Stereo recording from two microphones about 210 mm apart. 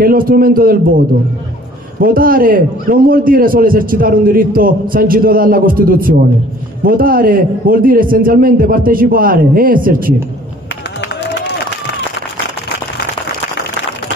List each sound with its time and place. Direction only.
0.0 s a man's voice: 45° right (ahead or behind)